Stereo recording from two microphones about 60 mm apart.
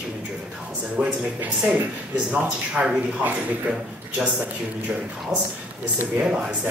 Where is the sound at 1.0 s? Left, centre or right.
Centre.